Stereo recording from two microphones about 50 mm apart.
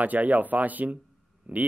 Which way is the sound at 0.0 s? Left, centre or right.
Right.